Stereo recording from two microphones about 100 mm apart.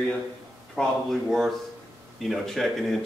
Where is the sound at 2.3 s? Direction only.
Centre (ahead or behind).